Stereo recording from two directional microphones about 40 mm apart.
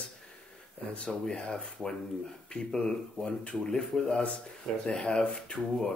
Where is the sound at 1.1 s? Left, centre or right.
Centre.